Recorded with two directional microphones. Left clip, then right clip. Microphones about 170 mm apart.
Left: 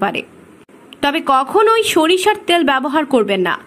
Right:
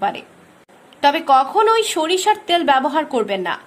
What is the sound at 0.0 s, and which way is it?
A woman's voice, 15° left (ahead or behind).